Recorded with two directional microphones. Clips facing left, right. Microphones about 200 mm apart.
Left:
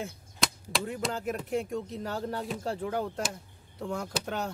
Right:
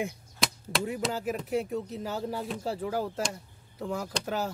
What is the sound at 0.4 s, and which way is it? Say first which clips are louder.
Speech: right 1 dB; 5° right (ahead or behind).